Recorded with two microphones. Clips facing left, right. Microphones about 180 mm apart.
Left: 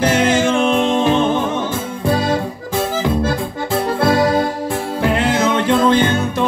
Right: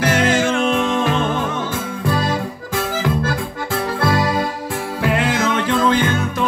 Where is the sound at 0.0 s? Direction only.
25° left (ahead or behind).